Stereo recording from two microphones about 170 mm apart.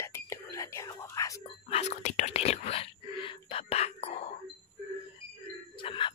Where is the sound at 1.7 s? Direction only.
40° left (ahead or behind).